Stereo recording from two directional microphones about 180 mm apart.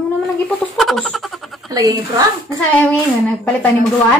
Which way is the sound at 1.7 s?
20° right (ahead or behind).